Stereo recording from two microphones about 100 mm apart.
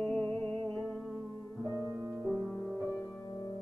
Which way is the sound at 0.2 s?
10° left (ahead or behind).